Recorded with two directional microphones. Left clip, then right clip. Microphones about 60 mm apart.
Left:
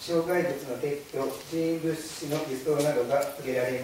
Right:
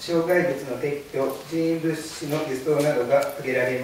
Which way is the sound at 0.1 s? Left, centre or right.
Centre.